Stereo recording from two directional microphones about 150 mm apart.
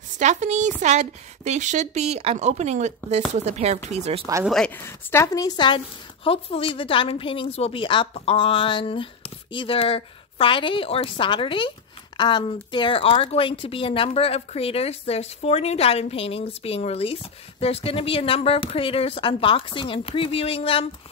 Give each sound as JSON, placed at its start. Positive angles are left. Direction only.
{"t": 0.2, "sound": "a woman's voice", "side_deg": -50}
{"t": 4.5, "sound": "speech", "side_deg": 5}
{"t": 4.7, "sound": "a woman's voice", "side_deg": 15}
{"t": 6.2, "sound": "speech", "side_deg": 40}